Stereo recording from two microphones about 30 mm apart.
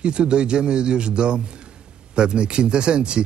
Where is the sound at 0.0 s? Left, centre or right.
Right.